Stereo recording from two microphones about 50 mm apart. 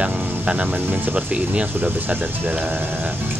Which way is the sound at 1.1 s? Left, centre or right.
Right.